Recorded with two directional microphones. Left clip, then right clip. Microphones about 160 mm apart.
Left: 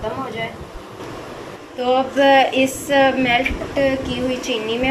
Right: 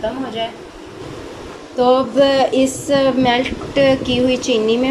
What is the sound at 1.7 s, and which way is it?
Speech, 50° right (ahead or behind).